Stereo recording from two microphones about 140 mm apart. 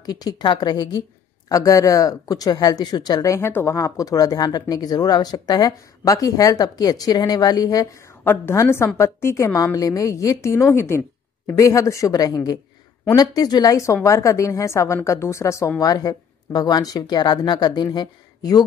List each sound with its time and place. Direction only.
0.0 s a woman's voice: 30° left (ahead or behind)